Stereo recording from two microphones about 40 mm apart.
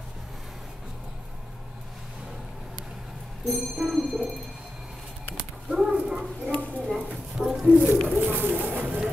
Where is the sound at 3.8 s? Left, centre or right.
Centre.